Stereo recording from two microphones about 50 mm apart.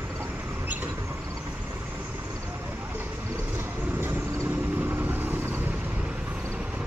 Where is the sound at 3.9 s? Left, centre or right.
Right.